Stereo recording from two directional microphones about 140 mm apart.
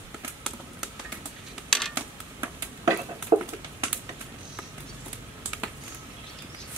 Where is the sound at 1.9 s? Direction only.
15° right (ahead or behind).